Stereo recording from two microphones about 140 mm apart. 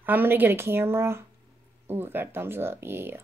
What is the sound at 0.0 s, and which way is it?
Speech, 15° right (ahead or behind).